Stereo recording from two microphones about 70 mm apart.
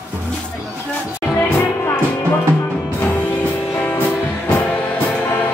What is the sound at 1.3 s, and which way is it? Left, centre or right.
Music, left.